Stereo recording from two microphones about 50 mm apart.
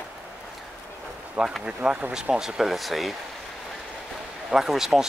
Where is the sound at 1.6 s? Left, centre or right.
Centre.